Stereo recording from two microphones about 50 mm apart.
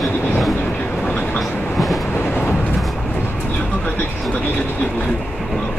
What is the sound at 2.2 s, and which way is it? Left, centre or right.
Vehicle, left.